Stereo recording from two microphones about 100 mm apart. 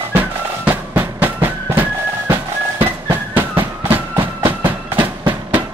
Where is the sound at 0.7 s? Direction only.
20° right (ahead or behind).